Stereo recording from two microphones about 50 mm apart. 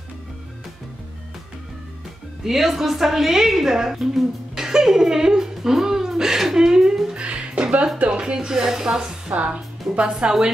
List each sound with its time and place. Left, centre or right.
2.4 s a woman's voice: centre
7.2 s music: right
8.1 s a woman's voice: centre
9.3 s a woman's voice: right